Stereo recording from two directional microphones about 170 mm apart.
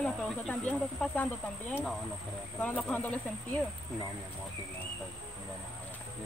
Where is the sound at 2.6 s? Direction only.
10° left (ahead or behind).